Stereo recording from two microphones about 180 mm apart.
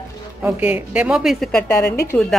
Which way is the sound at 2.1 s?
5° left (ahead or behind).